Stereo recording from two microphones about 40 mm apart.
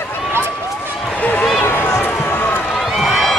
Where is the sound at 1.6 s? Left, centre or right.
Left.